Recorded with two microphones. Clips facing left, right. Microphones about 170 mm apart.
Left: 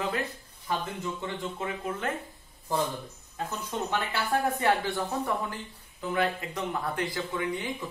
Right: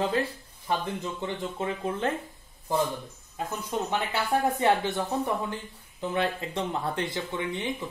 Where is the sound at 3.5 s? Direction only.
20° right (ahead or behind).